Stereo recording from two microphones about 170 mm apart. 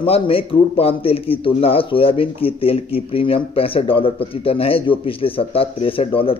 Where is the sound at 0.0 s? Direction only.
35° left (ahead or behind).